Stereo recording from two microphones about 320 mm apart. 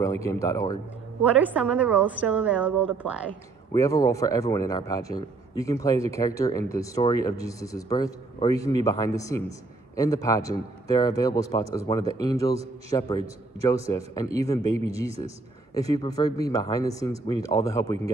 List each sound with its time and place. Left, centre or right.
0.0 s a man's voice: centre
1.4 s a woman's voice: centre
3.7 s a man's voice: centre
15.9 s a man's voice: centre